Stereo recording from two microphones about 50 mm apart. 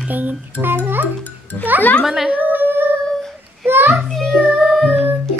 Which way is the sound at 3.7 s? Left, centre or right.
Right.